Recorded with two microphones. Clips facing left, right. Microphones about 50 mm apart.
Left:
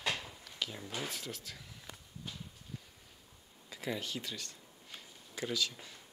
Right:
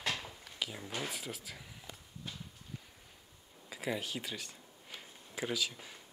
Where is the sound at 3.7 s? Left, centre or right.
Centre.